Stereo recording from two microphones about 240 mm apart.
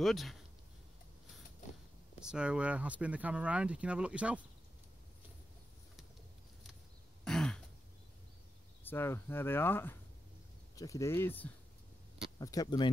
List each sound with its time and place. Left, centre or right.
0.0 s speech: centre
2.2 s speech: centre
7.2 s throat clearing: centre
8.8 s speech: centre